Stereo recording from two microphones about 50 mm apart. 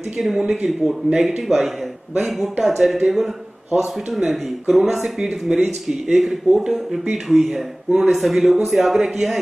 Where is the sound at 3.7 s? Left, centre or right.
Centre.